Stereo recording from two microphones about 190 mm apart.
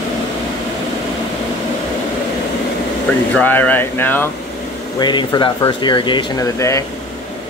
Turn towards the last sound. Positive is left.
turn(degrees=15)  # may be behind; listen again after turning